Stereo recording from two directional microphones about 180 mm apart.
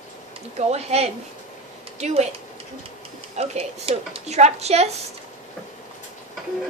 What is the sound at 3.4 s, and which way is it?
Speech, 35° right (ahead or behind).